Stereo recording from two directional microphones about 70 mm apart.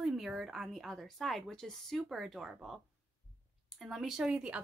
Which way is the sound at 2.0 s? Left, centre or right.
Centre.